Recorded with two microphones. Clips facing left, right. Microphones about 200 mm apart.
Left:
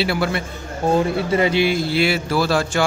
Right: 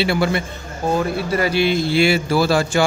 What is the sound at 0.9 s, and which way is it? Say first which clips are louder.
Speech: left 2 dB; 20° left (ahead or behind).